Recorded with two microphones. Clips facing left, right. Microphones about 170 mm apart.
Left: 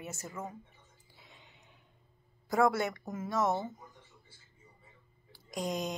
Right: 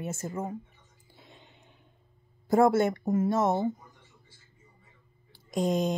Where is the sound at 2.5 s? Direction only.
25° right (ahead or behind).